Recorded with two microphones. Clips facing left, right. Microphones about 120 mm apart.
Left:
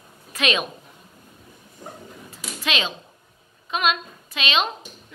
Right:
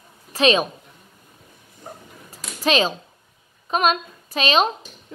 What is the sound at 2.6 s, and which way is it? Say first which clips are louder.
A woman's voice: right 8 dB; 40° right (ahead or behind).